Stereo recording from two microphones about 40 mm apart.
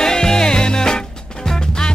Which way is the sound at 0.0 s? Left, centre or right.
Centre.